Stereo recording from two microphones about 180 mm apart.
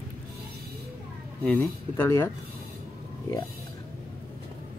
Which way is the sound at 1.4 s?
10° left (ahead or behind).